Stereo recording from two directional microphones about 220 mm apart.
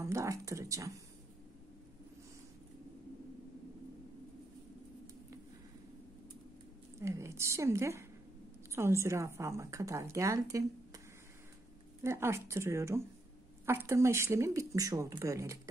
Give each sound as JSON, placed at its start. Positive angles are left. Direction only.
{"t": 0.0, "sound": "a woman's voice", "side_deg": -15}
{"t": 7.0, "sound": "a woman's voice", "side_deg": -15}
{"t": 12.0, "sound": "a woman's voice", "side_deg": -10}